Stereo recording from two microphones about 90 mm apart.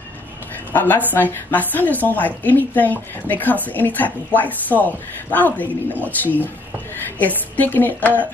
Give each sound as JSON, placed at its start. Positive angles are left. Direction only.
{"t": 0.7, "sound": "speech", "side_deg": 20}